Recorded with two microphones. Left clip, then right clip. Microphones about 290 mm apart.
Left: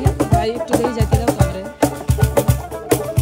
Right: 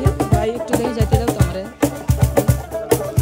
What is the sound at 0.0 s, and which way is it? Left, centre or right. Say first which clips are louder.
Music: left 1 dB; centre.